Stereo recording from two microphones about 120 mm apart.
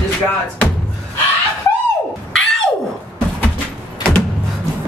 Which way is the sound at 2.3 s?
5° left (ahead or behind).